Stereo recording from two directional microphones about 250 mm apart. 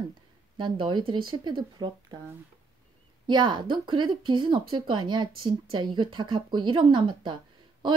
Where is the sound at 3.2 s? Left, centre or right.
Centre.